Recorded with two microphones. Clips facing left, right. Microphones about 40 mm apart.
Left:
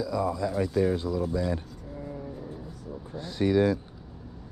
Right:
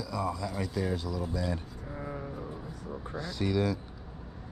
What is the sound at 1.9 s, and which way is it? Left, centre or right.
Foghorn, right.